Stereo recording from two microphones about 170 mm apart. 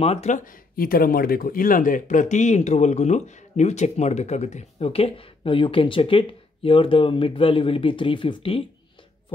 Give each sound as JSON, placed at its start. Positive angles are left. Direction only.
{"t": 0.0, "sound": "speech", "side_deg": 40}